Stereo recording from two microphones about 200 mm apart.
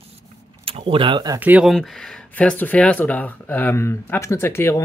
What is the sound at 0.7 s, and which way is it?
Speech, 30° right (ahead or behind).